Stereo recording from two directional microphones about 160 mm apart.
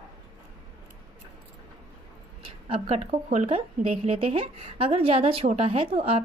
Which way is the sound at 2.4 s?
40° right (ahead or behind).